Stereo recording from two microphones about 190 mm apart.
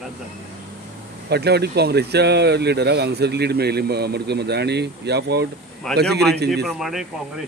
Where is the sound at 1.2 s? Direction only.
60° right (ahead or behind).